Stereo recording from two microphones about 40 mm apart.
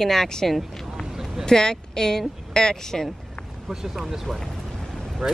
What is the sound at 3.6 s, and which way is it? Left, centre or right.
Speech, centre.